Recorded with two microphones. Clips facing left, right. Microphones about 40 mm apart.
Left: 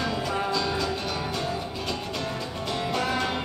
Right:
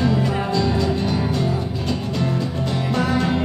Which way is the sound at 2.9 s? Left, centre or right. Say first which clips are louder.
Right 7 dB; centre.